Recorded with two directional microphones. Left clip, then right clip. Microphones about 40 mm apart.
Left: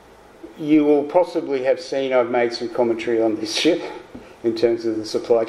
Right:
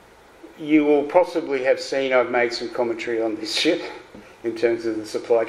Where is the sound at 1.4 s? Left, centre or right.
Right.